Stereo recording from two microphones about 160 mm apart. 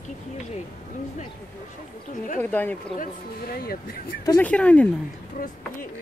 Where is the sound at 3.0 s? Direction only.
70° left (ahead or behind).